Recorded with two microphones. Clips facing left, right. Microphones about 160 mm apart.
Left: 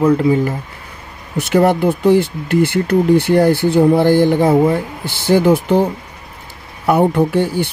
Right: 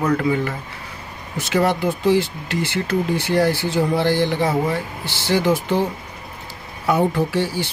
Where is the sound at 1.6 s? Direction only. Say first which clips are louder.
Left 5 dB; 55° left (ahead or behind).